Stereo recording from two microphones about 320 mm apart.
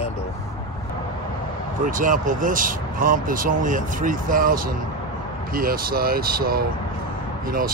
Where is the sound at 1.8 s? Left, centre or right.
Right.